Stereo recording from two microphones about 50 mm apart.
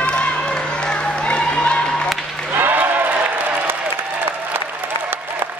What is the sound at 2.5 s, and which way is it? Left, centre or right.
Applause, right.